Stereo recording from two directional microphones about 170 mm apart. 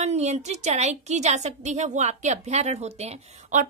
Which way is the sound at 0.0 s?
40° right (ahead or behind).